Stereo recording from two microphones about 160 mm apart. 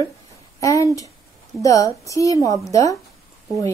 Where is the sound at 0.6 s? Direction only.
20° left (ahead or behind).